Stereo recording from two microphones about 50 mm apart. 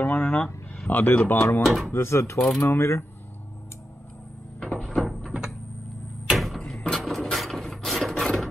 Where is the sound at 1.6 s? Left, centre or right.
Centre.